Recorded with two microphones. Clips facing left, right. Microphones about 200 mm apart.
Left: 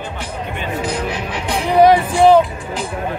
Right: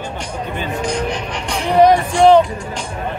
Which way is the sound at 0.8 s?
5° left (ahead or behind).